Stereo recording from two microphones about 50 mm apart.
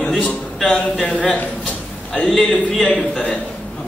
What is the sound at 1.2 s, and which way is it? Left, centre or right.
Speech, left.